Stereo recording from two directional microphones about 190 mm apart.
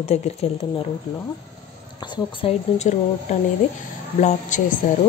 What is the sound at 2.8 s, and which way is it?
A woman's voice, 35° left (ahead or behind).